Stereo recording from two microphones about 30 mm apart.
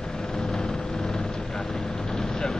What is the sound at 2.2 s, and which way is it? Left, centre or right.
Vehicle, left.